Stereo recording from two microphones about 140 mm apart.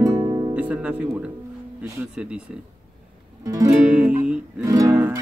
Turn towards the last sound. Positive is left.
turn(degrees=-25)  # may be behind; listen again after turning